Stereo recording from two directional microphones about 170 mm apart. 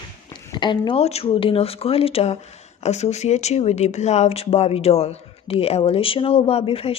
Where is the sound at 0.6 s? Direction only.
30° left (ahead or behind).